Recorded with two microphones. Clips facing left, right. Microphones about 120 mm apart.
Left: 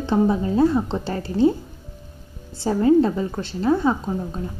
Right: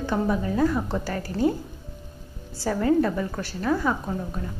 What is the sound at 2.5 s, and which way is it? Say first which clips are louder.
A woman's voice: left 5 dB; 25° left (ahead or behind).